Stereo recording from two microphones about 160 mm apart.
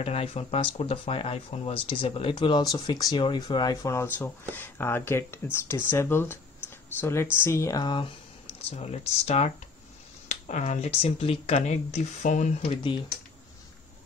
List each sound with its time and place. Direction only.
0.0 s speech: 40° left (ahead or behind)